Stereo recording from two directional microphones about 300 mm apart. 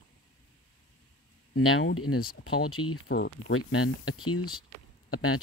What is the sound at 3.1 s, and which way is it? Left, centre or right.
Speech, left.